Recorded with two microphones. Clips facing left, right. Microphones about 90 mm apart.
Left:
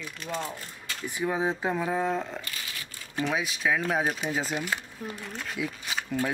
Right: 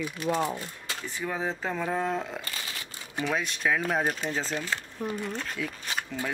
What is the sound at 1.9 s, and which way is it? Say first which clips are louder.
Speech: left 1 dB; centre (ahead or behind).